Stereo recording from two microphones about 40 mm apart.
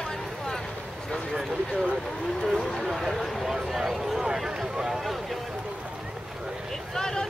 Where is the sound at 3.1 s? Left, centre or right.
Centre.